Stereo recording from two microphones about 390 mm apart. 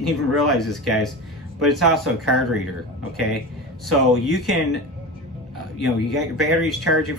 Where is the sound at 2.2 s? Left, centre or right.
Right.